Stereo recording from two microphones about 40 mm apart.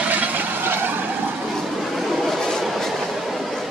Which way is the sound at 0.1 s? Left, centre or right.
Right.